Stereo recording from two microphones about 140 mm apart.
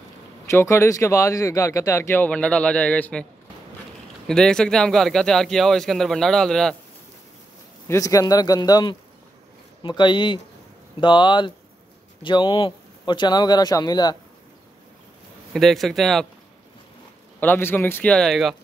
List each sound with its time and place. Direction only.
0.5 s speech: 20° left (ahead or behind)
4.3 s speech: 5° left (ahead or behind)
7.9 s speech: 25° left (ahead or behind)
15.5 s speech: centre (ahead or behind)
17.4 s speech: 15° left (ahead or behind)